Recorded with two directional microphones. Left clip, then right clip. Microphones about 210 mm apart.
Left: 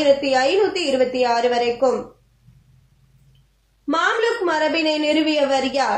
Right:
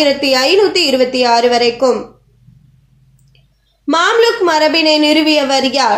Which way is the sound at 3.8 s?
45° right (ahead or behind).